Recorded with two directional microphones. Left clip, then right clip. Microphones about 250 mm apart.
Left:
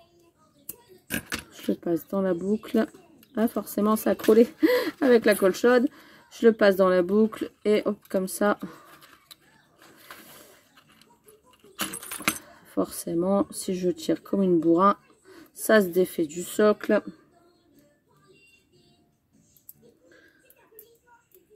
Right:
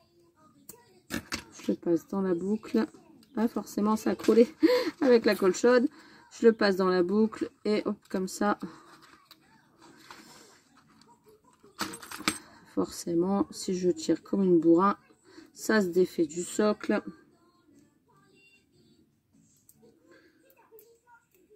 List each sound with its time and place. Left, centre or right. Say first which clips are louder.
1.7 s speech: left 2 dB; centre
9.9 s a sound: left 4 dB; centre
11.8 s keys jangling: left 3 dB; centre
13.6 s speech: left 1 dB; centre